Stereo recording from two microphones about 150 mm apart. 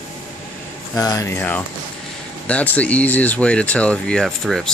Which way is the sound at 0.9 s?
20° left (ahead or behind).